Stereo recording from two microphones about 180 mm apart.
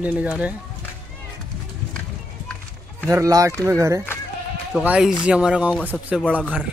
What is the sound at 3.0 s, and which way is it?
Speech, 15° right (ahead or behind).